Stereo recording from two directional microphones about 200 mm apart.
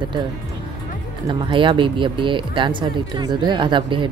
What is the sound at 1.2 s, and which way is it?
Speech, 25° right (ahead or behind).